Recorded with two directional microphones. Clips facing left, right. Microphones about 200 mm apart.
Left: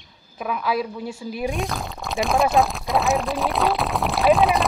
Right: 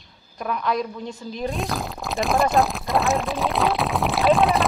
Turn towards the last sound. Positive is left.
turn(degrees=0)  # may be behind; listen again after turning